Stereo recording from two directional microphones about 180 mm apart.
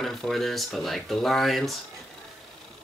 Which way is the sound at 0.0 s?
Centre (ahead or behind).